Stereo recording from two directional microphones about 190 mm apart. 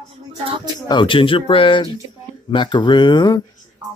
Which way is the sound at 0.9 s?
25° left (ahead or behind).